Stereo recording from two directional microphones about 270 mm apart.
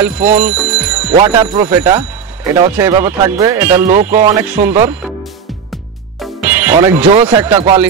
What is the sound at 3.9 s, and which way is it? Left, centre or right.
Speech, right.